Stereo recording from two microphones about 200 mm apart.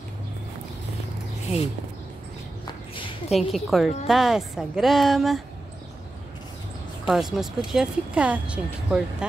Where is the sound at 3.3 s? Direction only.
Centre (ahead or behind).